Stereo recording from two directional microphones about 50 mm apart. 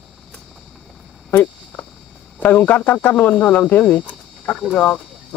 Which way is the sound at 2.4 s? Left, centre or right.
Left.